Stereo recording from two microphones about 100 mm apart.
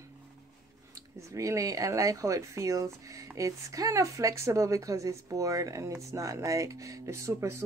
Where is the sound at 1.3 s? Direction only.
35° right (ahead or behind).